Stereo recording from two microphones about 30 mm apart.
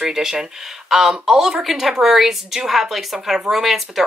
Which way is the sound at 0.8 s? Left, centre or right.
Centre.